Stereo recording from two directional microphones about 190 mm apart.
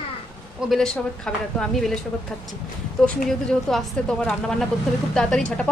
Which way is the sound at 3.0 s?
Centre (ahead or behind).